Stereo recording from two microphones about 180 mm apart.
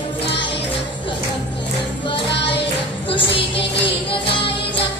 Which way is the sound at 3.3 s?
30° left (ahead or behind).